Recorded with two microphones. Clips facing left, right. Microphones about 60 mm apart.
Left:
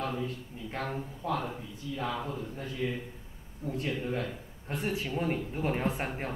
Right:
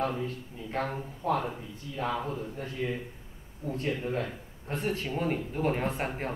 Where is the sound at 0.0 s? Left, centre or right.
Right.